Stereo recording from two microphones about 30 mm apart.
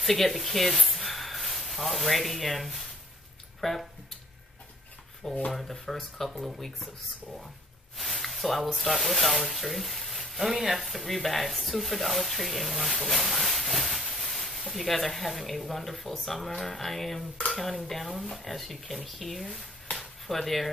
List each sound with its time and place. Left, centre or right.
0.0 s speech: centre
3.6 s speech: centre
5.5 s speech: centre
6.3 s speech: centre
8.0 s a sound: centre
8.7 s speech: centre